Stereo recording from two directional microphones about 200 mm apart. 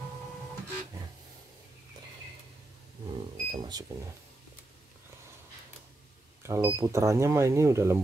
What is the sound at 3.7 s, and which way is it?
Speech, 20° right (ahead or behind).